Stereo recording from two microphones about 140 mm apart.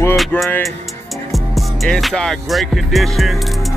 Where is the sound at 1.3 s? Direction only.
Centre (ahead or behind).